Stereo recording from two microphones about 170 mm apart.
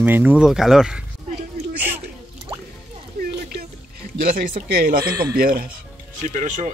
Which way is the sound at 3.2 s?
65° right (ahead or behind).